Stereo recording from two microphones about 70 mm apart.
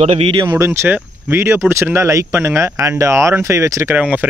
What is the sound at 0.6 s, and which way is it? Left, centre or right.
Speech, right.